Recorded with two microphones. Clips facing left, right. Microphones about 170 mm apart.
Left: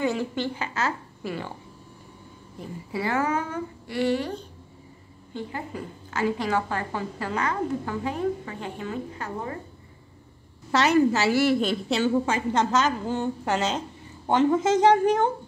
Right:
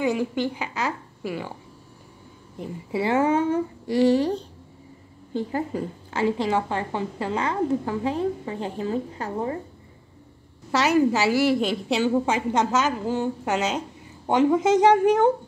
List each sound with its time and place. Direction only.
0.0 s a woman's voice: 10° right (ahead or behind)
2.6 s a woman's voice: 25° right (ahead or behind)
10.7 s a woman's voice: 10° right (ahead or behind)